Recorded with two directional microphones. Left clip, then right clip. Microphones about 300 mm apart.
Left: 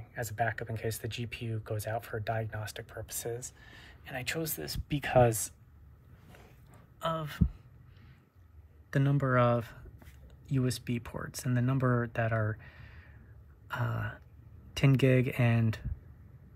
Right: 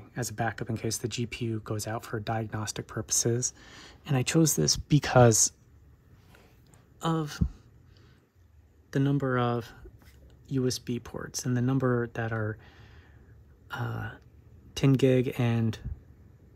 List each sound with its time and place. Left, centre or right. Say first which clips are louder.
0.1 s speech: right 1 dB; centre
7.0 s speech: right 3 dB; centre
8.9 s speech: right 1 dB; centre